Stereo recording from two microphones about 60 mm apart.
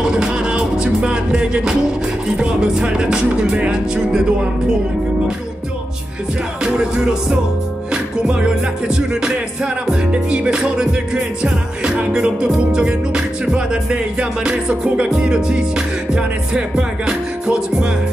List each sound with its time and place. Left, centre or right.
0.0 s music: centre
6.6 s music: centre